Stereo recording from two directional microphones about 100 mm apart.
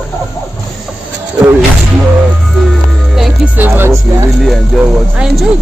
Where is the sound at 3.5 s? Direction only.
20° right (ahead or behind).